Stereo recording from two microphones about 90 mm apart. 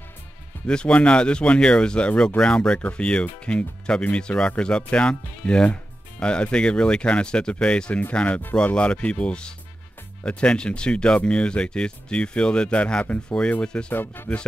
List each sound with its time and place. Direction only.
0.7 s speech: 10° left (ahead or behind)
13.9 s speech: 25° left (ahead or behind)